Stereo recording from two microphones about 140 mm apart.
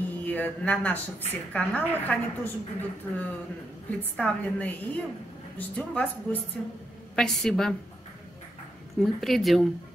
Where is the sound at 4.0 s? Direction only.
10° left (ahead or behind).